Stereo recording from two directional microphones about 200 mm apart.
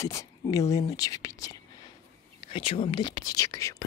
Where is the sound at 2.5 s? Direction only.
25° left (ahead or behind).